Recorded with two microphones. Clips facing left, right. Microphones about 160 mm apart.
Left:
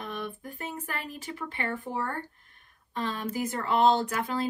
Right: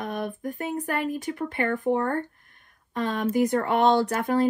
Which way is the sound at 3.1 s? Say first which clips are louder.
Right 8 dB; 75° right (ahead or behind).